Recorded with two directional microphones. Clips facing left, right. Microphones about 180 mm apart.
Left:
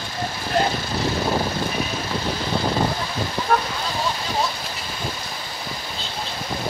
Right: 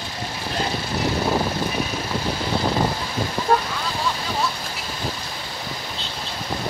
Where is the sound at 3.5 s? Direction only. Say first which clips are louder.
Right 1 dB; 30° right (ahead or behind).